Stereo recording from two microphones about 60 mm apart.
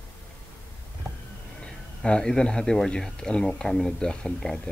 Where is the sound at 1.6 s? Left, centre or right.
Centre.